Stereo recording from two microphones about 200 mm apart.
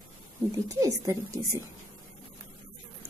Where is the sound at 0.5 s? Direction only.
15° right (ahead or behind).